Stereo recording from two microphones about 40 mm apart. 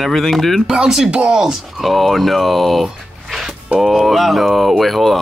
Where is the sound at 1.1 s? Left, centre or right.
Right.